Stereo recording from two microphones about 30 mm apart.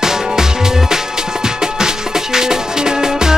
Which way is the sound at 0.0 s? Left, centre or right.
Centre.